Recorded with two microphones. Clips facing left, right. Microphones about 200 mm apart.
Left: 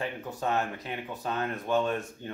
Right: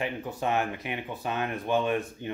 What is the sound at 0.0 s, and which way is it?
Speech, 15° right (ahead or behind).